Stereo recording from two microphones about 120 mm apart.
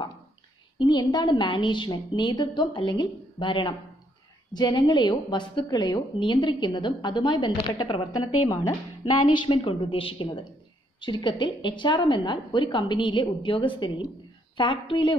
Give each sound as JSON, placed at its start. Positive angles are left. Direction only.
{"t": 0.7, "sound": "a woman's voice", "side_deg": 35}